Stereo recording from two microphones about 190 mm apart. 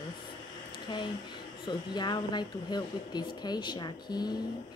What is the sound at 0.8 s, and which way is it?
Speech, 25° left (ahead or behind).